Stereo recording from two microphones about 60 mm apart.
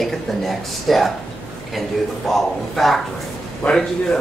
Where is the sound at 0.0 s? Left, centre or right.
Centre.